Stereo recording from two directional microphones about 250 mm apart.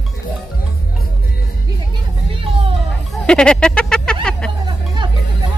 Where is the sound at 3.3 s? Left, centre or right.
Centre.